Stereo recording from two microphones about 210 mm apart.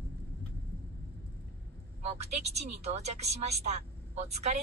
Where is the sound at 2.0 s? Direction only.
30° right (ahead or behind).